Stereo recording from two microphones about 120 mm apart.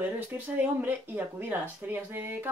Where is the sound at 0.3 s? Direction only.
20° right (ahead or behind).